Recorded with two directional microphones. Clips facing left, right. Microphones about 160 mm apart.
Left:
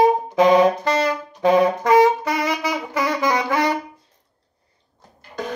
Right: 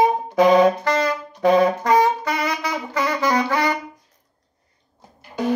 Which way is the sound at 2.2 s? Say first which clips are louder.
Left 1 dB; 25° left (ahead or behind).